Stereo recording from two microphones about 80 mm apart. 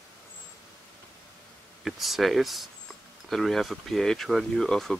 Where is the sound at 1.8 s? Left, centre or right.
Centre.